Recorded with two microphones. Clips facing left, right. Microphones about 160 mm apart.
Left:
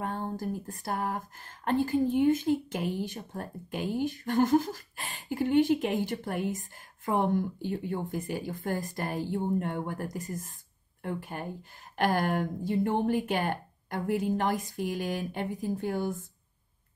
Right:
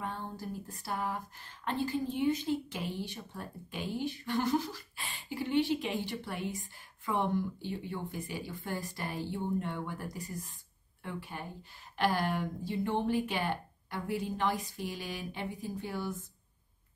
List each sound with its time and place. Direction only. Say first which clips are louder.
0.0 s speech: left 6 dB; 45° left (ahead or behind)